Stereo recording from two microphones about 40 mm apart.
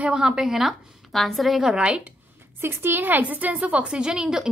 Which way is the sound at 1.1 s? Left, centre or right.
Centre.